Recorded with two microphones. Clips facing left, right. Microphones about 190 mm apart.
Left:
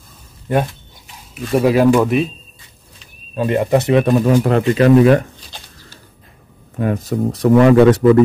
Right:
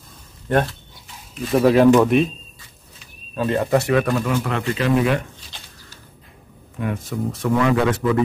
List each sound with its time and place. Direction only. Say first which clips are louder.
0.5 s speech: left 2 dB; 10° left (ahead or behind)
3.3 s speech: left 4 dB; 15° left (ahead or behind); by 8.2 s 45° left (ahead or behind)